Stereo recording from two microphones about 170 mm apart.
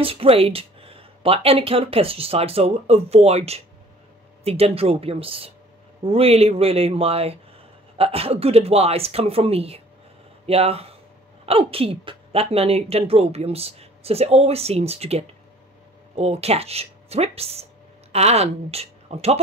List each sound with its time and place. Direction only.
0.0 s a woman's voice: 35° right (ahead or behind)